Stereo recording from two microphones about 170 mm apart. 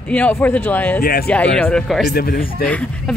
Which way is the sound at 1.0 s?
60° left (ahead or behind).